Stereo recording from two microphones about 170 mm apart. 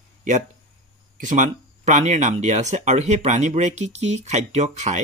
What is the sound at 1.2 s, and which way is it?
Speech, 50° right (ahead or behind).